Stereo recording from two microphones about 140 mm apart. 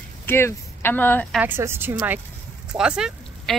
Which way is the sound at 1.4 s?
15° right (ahead or behind).